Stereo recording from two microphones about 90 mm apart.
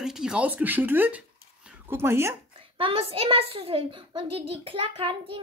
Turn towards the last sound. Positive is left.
turn(degrees=-80)